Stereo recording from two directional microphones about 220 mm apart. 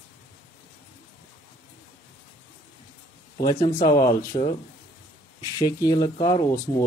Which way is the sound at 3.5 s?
20° left (ahead or behind).